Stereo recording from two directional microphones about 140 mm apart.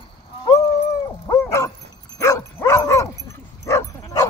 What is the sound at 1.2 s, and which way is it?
Dog, 20° left (ahead or behind).